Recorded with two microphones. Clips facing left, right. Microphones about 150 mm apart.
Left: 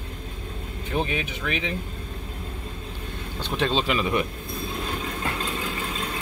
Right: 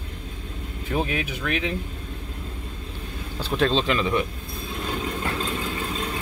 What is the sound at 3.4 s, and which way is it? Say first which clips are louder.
Speech: right 3 dB; 5° left (ahead or behind).